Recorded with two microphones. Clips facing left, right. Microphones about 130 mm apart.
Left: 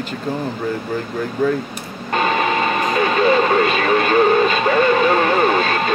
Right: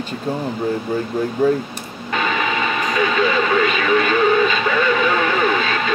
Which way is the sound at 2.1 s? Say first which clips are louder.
Left 3 dB; 45° left (ahead or behind).